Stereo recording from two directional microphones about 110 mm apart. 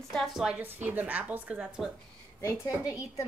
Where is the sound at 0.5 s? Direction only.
15° right (ahead or behind).